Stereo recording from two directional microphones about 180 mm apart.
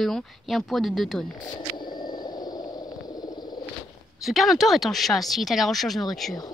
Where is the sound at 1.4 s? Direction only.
25° left (ahead or behind).